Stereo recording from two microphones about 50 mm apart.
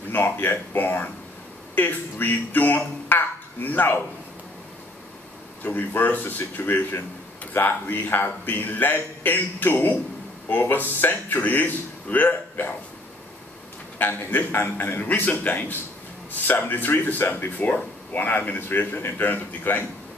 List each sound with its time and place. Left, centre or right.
0.1 s a man's voice: left
5.6 s a man's voice: left
13.9 s a man's voice: left
14.5 s a man's voice: left
18.9 s a man's voice: left